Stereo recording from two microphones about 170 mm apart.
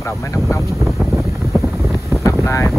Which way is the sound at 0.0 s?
15° left (ahead or behind).